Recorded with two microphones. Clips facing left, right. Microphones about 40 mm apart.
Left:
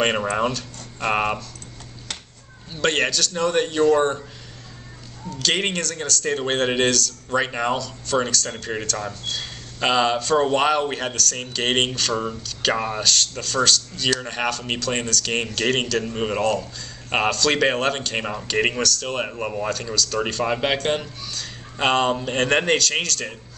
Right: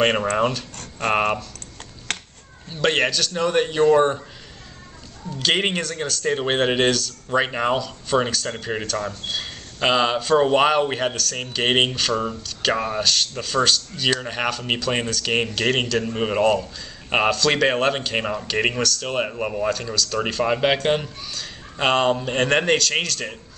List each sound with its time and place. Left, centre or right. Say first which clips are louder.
0.4 s speech: right 2 dB; centre
2.1 s a sound: right 6 dB; right
2.7 s a man's voice: right 1 dB; centre
5.3 s a man's voice: right 2 dB; centre